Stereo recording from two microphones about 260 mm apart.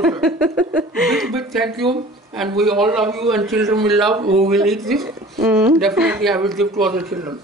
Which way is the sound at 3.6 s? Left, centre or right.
Centre.